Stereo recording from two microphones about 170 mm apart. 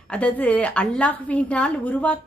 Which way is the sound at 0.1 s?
10° left (ahead or behind).